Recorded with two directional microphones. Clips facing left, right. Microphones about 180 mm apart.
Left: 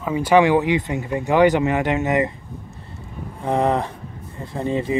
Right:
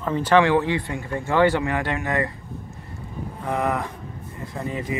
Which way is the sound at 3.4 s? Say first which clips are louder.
Left 5 dB; 30° left (ahead or behind).